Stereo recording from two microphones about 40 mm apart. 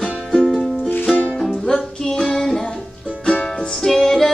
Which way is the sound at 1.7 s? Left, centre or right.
Centre.